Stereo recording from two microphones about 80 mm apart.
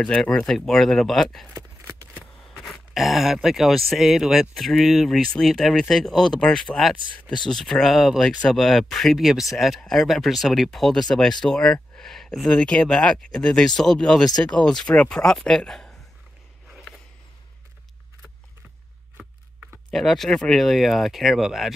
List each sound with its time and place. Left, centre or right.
0.0 s speech: centre
1.5 s a sound: right
2.9 s speech: centre
19.9 s speech: centre